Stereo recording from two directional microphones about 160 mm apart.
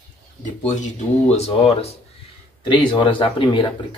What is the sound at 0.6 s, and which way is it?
Speech, 50° left (ahead or behind).